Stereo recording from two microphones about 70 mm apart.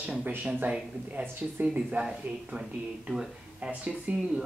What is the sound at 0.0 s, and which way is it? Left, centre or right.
Speech, right.